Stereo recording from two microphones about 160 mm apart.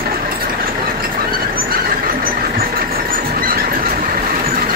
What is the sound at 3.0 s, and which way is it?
Vehicle, 65° right (ahead or behind).